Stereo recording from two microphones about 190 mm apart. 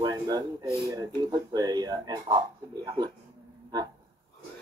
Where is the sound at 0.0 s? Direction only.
20° right (ahead or behind).